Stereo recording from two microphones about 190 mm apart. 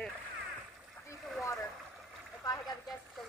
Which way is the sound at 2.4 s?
20° left (ahead or behind).